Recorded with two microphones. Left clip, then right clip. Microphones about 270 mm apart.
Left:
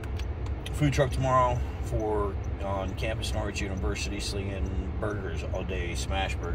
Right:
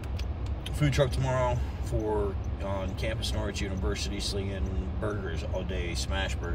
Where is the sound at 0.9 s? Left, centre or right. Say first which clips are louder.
Left 4 dB; centre.